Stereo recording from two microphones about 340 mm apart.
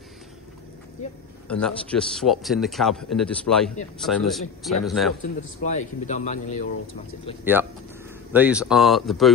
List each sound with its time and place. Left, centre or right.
1.5 s speech: centre
5.6 s speech: left
8.3 s speech: centre